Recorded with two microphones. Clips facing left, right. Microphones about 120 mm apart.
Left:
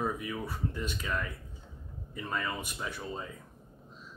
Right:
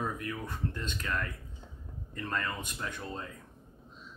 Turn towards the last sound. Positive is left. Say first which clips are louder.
# left 1 dB
turn(degrees=10)  # may be behind; listen again after turning